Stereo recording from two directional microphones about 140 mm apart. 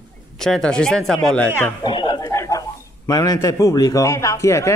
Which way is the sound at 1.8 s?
35° left (ahead or behind).